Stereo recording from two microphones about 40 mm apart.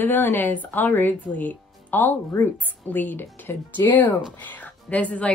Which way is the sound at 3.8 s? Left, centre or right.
Left.